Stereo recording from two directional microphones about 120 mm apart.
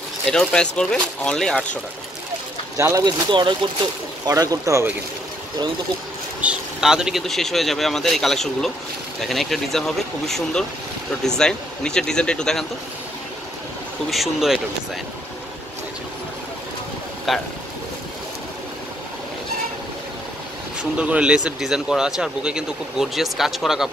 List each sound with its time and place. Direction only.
0.3 s speech: 5° left (ahead or behind)
2.8 s speech: 30° right (ahead or behind)
4.3 s speech: 30° right (ahead or behind)
6.4 s speech: 5° right (ahead or behind)
14.1 s speech: centre (ahead or behind)
17.3 s speech: centre (ahead or behind)
21.0 s speech: 10° right (ahead or behind)